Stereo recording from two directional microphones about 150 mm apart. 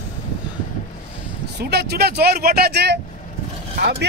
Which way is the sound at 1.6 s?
90° right.